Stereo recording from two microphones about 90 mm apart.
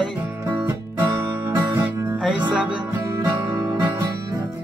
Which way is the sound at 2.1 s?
5° right (ahead or behind).